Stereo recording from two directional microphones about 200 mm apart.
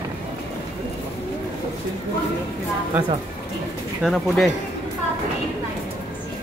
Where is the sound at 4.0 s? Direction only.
Centre (ahead or behind).